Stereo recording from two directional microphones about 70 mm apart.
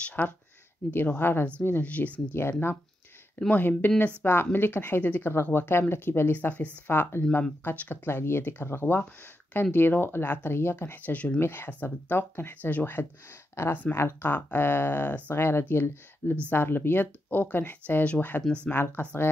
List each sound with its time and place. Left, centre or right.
0.0 s speech: left
3.3 s speech: left
18.8 s speech: left